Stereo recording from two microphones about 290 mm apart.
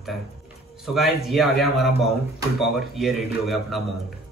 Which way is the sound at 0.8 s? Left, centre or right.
Centre.